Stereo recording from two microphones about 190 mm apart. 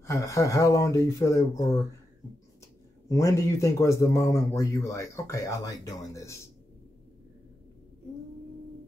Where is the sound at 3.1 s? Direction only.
15° left (ahead or behind).